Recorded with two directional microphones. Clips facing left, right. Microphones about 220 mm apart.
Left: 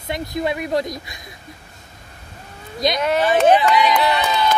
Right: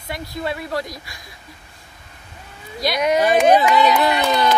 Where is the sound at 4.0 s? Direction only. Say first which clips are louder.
Right 2 dB; 45° right (ahead or behind).